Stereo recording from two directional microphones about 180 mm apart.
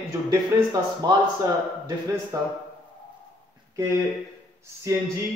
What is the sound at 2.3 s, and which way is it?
Speech, 20° right (ahead or behind).